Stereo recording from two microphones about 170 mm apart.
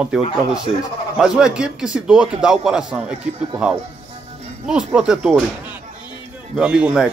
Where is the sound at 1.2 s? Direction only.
5° right (ahead or behind).